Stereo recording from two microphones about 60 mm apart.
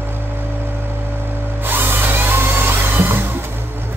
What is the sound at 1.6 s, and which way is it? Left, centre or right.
Music, right.